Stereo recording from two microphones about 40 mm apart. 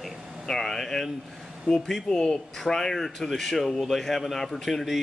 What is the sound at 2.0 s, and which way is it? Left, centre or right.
A woman's voice, centre.